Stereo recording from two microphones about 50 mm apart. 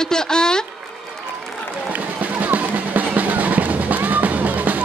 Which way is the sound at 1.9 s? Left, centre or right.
Right.